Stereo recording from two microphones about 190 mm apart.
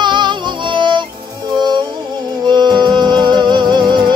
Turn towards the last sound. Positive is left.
turn(degrees=-25)  # may be behind; listen again after turning